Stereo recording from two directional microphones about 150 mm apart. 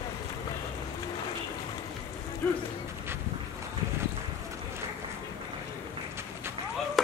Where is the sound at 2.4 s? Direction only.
15° left (ahead or behind).